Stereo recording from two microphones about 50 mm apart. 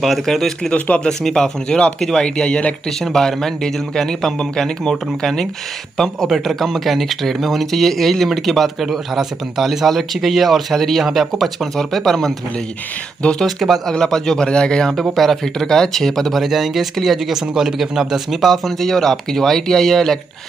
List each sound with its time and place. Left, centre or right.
0.0 s speech: centre
0.7 s speech: left
1.0 s speech: centre
13.4 s speech: centre
16.4 s speech: centre